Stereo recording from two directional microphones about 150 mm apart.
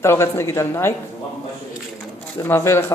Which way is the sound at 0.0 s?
15° left (ahead or behind).